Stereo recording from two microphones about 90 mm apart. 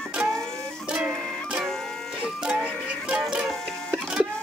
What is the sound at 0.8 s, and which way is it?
Printer, 10° right (ahead or behind).